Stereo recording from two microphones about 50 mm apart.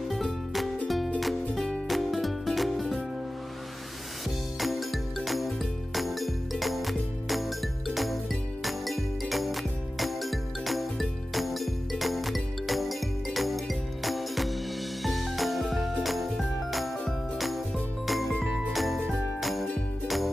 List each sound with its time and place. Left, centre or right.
0.1 s music: centre
4.6 s music: centre
18.0 s music: centre
18.4 s jingle bell: centre